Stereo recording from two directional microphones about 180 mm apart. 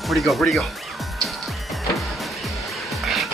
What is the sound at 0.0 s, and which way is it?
Music, centre (ahead or behind).